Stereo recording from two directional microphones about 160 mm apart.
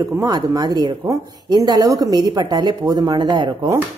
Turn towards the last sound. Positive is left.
turn(degrees=-30)  # may be behind; listen again after turning